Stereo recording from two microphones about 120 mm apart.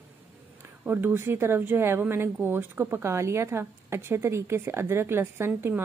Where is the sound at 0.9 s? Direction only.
20° right (ahead or behind).